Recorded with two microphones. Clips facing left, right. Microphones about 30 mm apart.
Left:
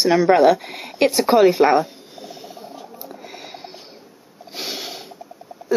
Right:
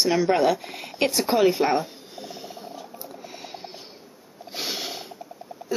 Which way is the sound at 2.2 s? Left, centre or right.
Centre.